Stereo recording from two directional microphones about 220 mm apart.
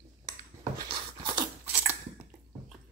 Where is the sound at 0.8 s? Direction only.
25° right (ahead or behind).